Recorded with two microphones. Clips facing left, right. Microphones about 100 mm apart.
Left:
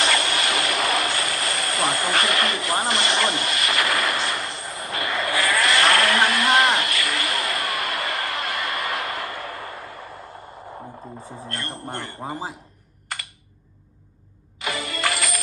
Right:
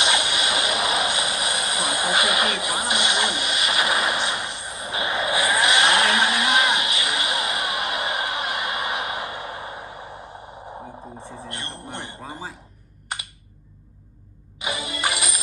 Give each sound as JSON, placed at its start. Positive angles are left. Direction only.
{"t": 0.0, "sound": "vehicle", "side_deg": -15}
{"t": 11.4, "sound": "a sound", "side_deg": -20}
{"t": 14.9, "sound": "music", "side_deg": -20}